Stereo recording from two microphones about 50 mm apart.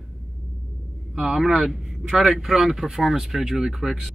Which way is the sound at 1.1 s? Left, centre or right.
Centre.